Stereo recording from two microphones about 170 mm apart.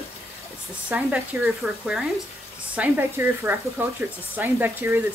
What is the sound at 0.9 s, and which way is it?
Speech, 5° right (ahead or behind).